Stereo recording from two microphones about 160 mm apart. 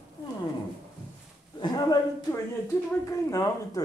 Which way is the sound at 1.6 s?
25° left (ahead or behind).